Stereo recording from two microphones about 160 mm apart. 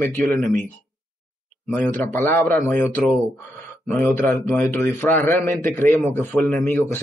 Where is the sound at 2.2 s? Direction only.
15° left (ahead or behind).